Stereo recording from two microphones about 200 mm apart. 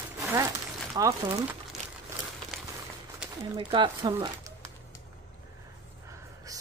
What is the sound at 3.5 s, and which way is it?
Speech, 25° right (ahead or behind).